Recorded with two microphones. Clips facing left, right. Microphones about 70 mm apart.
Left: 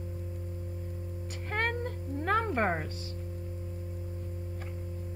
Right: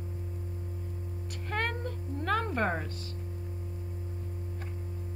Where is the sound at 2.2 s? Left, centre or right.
Left.